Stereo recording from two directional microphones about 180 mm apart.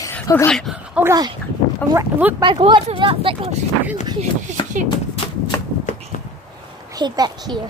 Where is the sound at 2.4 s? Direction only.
25° right (ahead or behind).